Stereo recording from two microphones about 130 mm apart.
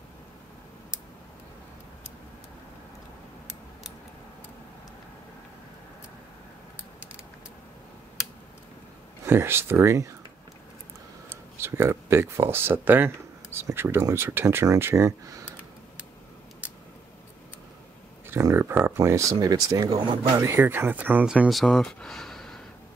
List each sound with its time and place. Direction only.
9.2 s speech: 20° right (ahead or behind)
11.2 s speech: 15° right (ahead or behind)
18.3 s speech: 20° right (ahead or behind)
19.9 s speech: 40° right (ahead or behind); by 21.5 s 10° right (ahead or behind)
21.5 s speech: centre (ahead or behind)